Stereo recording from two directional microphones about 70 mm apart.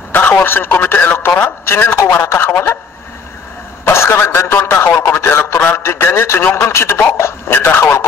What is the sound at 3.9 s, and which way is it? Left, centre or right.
Speech, left.